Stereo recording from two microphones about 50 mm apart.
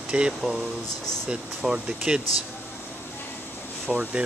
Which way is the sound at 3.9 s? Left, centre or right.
Right.